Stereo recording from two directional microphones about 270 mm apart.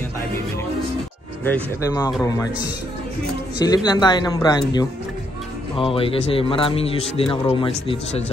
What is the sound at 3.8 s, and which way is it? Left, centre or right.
A man's voice, centre.